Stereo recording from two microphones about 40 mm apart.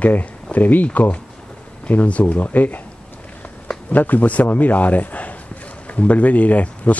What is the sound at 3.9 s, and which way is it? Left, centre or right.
Speech, left.